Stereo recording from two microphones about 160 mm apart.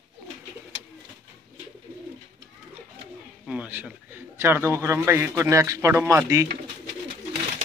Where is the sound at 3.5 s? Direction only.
10° right (ahead or behind).